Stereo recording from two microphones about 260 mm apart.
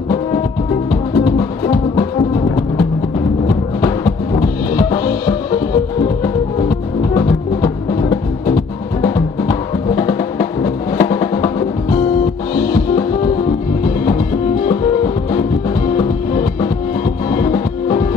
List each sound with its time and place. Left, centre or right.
1.1 s music: centre
7.2 s music: centre
17.3 s music: centre